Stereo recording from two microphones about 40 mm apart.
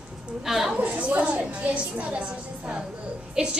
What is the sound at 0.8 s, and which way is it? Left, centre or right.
A woman's voice, right.